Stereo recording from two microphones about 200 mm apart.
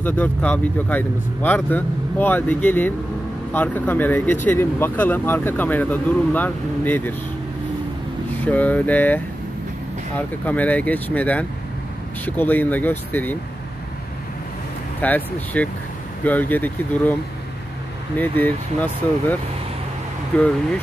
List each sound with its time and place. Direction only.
0.0 s speech: 10° left (ahead or behind)
8.5 s speech: 10° left (ahead or behind)
15.0 s speech: 10° left (ahead or behind)
20.3 s speech: 5° left (ahead or behind)